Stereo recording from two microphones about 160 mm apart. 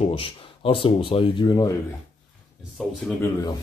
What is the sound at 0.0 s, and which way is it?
Speech, 35° left (ahead or behind).